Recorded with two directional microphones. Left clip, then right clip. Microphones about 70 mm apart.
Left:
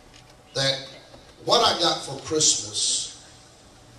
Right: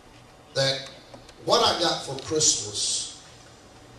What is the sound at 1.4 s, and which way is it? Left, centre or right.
A man's voice, centre.